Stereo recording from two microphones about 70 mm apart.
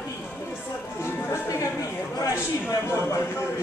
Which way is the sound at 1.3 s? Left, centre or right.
Left.